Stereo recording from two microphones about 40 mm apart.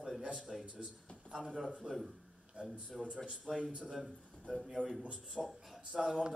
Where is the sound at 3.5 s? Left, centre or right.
Centre.